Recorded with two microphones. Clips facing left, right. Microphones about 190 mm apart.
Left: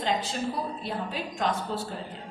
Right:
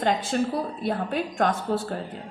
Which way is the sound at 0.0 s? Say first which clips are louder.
Right 5 dB; 50° right (ahead or behind).